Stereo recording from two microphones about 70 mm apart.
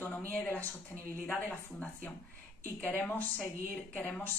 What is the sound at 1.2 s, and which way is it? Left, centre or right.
Speech, left.